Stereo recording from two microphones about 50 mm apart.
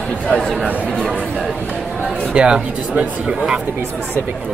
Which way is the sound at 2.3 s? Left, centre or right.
Centre.